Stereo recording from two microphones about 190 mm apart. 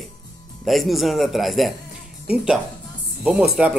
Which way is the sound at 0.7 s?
Centre (ahead or behind).